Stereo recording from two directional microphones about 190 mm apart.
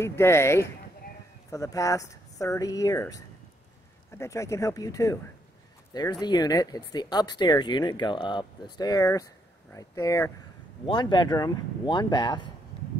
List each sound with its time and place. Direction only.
0.0 s speech: 15° left (ahead or behind)
6.2 s speech: 20° left (ahead or behind)